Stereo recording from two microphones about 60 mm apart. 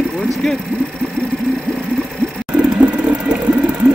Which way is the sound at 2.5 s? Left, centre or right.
Centre.